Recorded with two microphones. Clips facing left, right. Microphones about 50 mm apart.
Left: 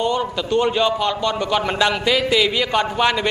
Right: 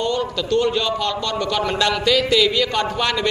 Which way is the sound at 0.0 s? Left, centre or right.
Centre.